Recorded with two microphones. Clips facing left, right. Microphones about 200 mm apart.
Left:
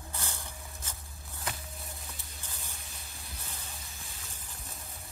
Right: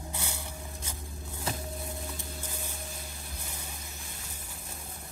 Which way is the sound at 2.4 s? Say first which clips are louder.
Right 8 dB; 10° right (ahead or behind).